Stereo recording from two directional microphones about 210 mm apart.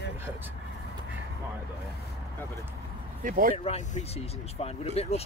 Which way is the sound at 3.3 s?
40° right (ahead or behind).